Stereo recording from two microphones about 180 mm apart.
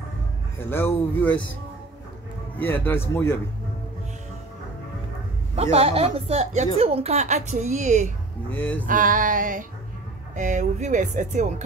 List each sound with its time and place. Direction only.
0.6 s speech: 15° left (ahead or behind)
2.5 s speech: 10° left (ahead or behind)
5.6 s a woman's voice: 35° right (ahead or behind)
8.5 s speech: 10° left (ahead or behind)
8.8 s speech: 45° right (ahead or behind)